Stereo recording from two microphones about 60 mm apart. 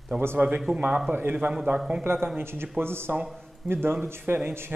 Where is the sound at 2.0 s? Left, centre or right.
Right.